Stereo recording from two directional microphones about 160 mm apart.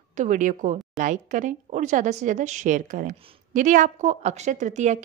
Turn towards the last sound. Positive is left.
turn(degrees=-45)  # may be behind; listen again after turning